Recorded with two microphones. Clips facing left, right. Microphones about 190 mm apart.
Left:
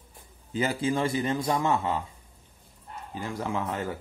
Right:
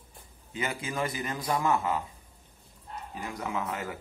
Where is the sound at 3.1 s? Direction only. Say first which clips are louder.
Left 3 dB; 30° left (ahead or behind).